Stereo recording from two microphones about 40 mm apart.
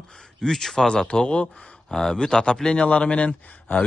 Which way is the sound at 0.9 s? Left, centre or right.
Left.